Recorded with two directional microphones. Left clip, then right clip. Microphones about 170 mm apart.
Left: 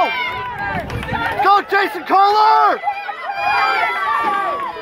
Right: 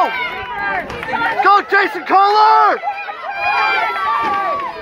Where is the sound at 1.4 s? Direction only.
60° left (ahead or behind).